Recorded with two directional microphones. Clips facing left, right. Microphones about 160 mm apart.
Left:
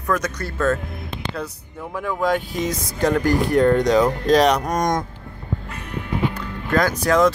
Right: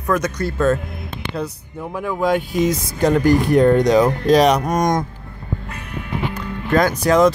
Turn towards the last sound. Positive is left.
turn(degrees=-20)  # may be behind; listen again after turning